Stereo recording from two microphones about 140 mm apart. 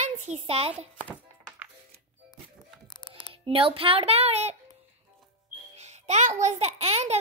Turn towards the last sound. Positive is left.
turn(degrees=-50)  # may be behind; listen again after turning